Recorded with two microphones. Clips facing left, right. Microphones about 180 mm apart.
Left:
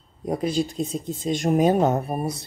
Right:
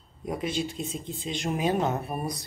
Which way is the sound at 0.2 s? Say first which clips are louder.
Left 6 dB; 35° left (ahead or behind).